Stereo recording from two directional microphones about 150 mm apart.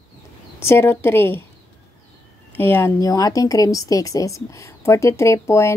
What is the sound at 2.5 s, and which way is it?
Speech, 15° left (ahead or behind).